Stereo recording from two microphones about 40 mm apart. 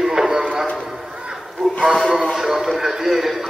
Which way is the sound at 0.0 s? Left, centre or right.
Centre.